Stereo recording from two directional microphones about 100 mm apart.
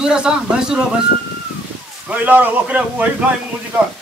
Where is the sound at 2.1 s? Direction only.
15° right (ahead or behind).